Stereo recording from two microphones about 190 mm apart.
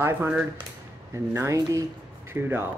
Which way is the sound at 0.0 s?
10° right (ahead or behind).